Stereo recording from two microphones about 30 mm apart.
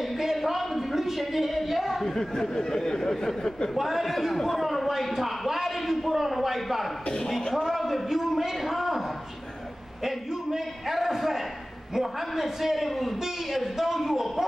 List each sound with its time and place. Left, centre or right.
0.4 s a sound: centre
2.0 s speech: centre
3.7 s a man's voice: centre
10.0 s a man's voice: centre